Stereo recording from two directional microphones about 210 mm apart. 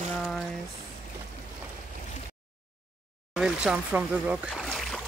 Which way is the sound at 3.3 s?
5° right (ahead or behind).